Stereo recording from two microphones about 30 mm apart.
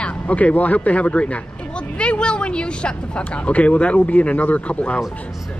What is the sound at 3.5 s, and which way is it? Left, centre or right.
Speech, left.